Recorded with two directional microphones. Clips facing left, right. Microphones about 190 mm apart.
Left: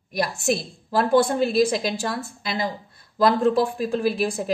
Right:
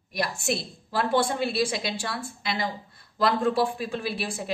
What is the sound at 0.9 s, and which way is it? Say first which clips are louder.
A woman's voice: left 6 dB; 45° left (ahead or behind).